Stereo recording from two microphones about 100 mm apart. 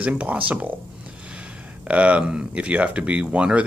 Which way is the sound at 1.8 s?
10° right (ahead or behind).